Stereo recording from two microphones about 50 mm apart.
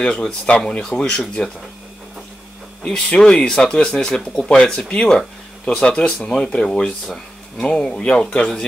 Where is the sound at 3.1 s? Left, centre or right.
Left.